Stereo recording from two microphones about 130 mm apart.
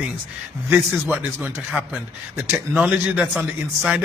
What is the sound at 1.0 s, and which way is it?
Speech, 15° right (ahead or behind).